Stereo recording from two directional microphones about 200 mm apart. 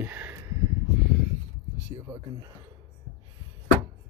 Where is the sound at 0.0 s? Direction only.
10° right (ahead or behind).